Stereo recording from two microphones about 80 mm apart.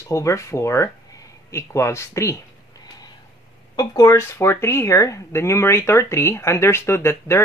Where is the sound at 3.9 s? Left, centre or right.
Left.